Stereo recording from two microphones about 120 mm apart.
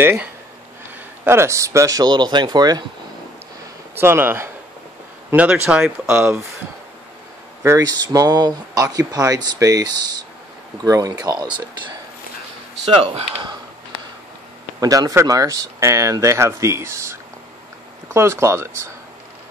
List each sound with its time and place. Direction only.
0.0 s speech: 15° right (ahead or behind); by 2.8 s 35° right (ahead or behind)
3.9 s speech: 20° right (ahead or behind)
6.0 s speech: 20° right (ahead or behind)
7.6 s speech: 30° right (ahead or behind)
14.8 s speech: 30° right (ahead or behind)